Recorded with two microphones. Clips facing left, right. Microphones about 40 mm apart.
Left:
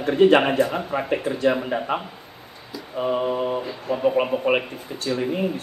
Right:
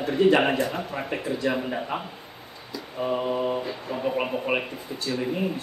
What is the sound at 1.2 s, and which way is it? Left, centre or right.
Speech, left.